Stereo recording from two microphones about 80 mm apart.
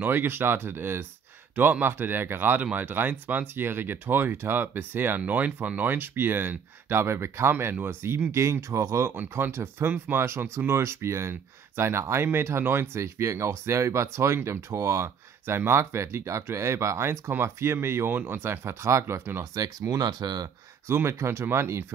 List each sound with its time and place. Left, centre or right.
0.0 s speech: right
9.1 s speech: right
20.0 s speech: right
20.9 s speech: right